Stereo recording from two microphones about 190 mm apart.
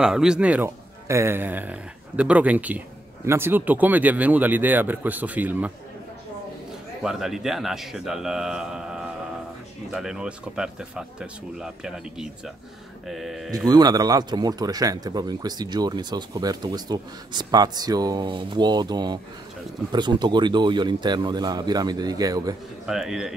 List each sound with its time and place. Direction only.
0.0 s a man's voice: 5° right (ahead or behind)
7.0 s speech: centre (ahead or behind)
13.7 s speech: 20° right (ahead or behind)
22.8 s speech: centre (ahead or behind)